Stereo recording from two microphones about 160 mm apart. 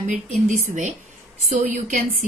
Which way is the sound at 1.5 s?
50° right (ahead or behind).